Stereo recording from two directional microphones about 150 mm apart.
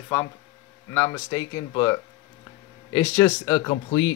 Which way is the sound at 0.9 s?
15° left (ahead or behind).